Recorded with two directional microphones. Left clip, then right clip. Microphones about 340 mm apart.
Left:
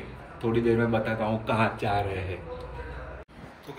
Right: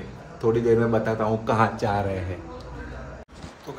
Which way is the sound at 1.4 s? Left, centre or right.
Right.